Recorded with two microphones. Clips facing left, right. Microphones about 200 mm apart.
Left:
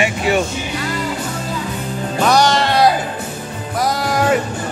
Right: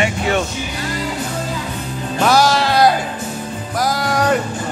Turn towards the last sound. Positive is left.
turn(degrees=0)  # may be behind; listen again after turning